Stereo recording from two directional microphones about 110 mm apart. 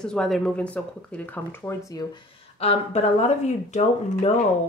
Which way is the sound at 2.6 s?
65° left (ahead or behind).